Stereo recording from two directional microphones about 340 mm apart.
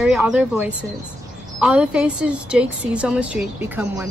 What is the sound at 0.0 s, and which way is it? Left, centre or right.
A woman's voice, centre.